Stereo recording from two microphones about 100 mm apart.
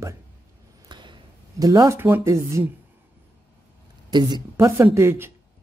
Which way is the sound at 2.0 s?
25° right (ahead or behind).